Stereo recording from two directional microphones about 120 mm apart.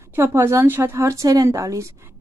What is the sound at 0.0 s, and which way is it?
A woman's voice, 20° right (ahead or behind).